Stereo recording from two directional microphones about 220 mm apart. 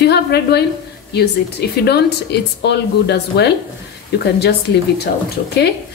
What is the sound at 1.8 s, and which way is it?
Speech, 50° left (ahead or behind).